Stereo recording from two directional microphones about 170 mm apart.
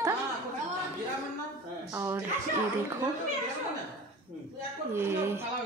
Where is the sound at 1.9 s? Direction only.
15° right (ahead or behind).